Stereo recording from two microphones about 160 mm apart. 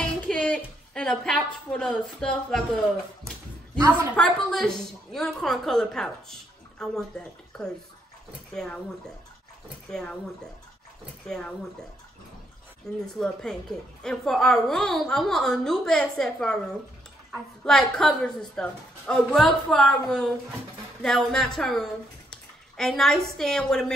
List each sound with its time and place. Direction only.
0.0 s a woman's voice: 5° left (ahead or behind)
4.2 s a woman's voice: centre (ahead or behind)
9.8 s speech: 5° left (ahead or behind)
11.2 s a woman's voice: 5° left (ahead or behind)
13.0 s a woman's voice: 5° left (ahead or behind)